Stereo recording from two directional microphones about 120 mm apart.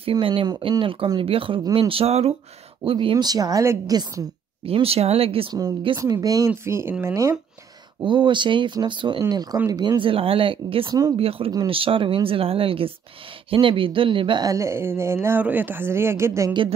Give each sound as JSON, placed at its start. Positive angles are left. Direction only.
{"t": 0.0, "sound": "speech", "side_deg": -45}
{"t": 2.8, "sound": "a woman's voice", "side_deg": -50}
{"t": 4.6, "sound": "speech", "side_deg": -55}
{"t": 5.5, "sound": "speech", "side_deg": -35}
{"t": 8.0, "sound": "a woman's voice", "side_deg": -40}
{"t": 10.9, "sound": "speech", "side_deg": -30}
{"t": 11.1, "sound": "speech", "side_deg": -55}
{"t": 14.4, "sound": "speech", "side_deg": -25}